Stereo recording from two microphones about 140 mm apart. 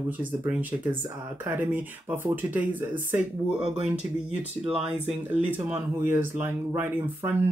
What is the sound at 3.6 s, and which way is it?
Speech, 45° right (ahead or behind).